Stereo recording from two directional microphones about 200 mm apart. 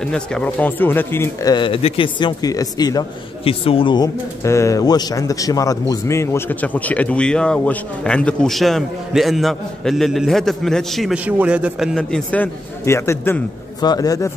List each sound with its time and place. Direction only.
0.0 s speech: 5° left (ahead or behind)